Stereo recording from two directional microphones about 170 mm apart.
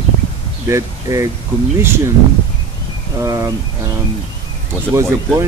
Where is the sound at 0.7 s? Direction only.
20° right (ahead or behind).